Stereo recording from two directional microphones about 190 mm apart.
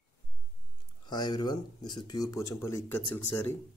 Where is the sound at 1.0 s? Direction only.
20° left (ahead or behind).